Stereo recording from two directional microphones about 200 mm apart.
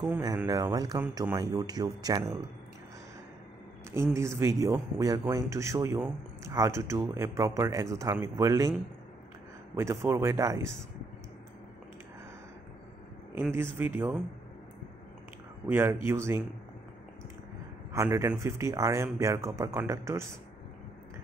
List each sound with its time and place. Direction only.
0.4 s speech: 20° right (ahead or behind)
3.9 s speech: 15° right (ahead or behind)
9.8 s speech: 15° right (ahead or behind)
13.3 s speech: 10° right (ahead or behind)
15.7 s speech: 10° right (ahead or behind)
17.9 s speech: 15° right (ahead or behind)